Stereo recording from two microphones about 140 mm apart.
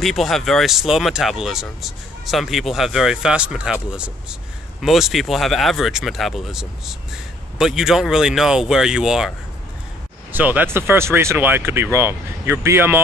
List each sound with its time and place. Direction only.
0.0 s speech: centre (ahead or behind)
10.3 s speech: 10° right (ahead or behind)